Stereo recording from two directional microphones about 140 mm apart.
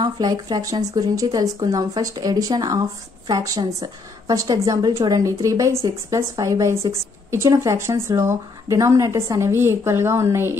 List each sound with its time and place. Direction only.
0.0 s a woman's voice: 30° right (ahead or behind)